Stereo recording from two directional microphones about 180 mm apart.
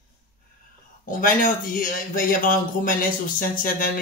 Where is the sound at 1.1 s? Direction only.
50° left (ahead or behind).